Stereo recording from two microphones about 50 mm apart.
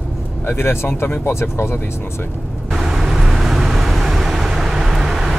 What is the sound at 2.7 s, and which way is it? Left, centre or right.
Vehicle, centre.